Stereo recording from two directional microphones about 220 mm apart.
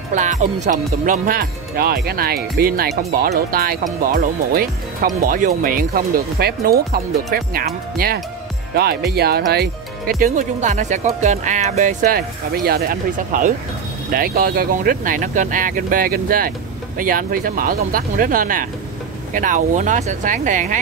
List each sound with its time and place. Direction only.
0.1 s speech: 35° right (ahead or behind)